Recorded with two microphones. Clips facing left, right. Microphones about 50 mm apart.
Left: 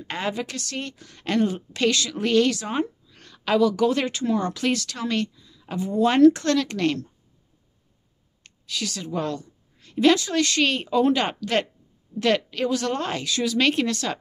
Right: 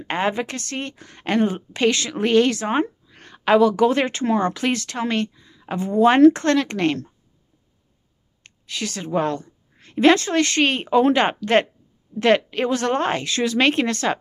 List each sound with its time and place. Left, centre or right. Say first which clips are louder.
0.0 s a woman's voice: right 5 dB; right
8.5 s a woman's voice: right 2 dB; right